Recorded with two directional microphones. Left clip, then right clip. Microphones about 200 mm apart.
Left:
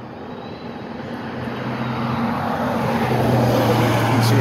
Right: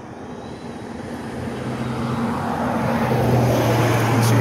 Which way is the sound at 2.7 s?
20° left (ahead or behind).